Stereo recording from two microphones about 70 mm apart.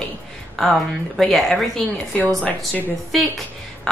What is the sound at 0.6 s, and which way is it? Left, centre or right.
A woman's voice, centre.